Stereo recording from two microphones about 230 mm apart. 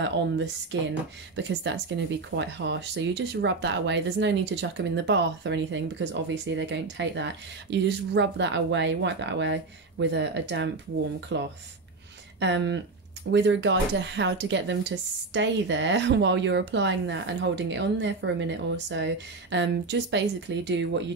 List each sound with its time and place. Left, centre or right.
0.0 s speech: right